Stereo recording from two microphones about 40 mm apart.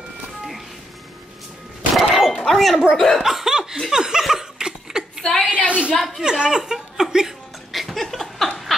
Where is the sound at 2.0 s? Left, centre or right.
Centre.